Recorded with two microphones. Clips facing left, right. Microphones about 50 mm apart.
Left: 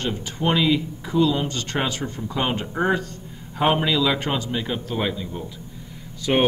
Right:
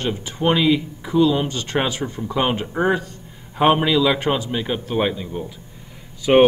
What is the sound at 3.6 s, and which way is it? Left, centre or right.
Speech, right.